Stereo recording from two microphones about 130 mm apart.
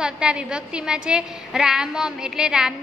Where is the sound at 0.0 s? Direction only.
10° right (ahead or behind).